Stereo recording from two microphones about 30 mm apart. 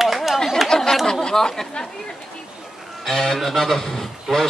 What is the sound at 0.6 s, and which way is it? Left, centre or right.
Chatter, centre.